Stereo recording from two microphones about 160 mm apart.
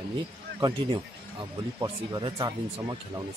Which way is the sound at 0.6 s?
25° right (ahead or behind).